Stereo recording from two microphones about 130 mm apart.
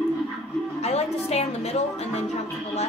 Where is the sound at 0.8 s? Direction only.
55° left (ahead or behind).